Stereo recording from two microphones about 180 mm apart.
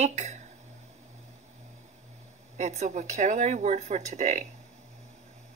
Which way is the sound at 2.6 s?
40° right (ahead or behind).